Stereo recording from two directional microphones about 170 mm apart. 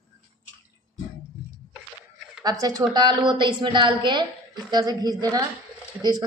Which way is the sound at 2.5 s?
20° right (ahead or behind).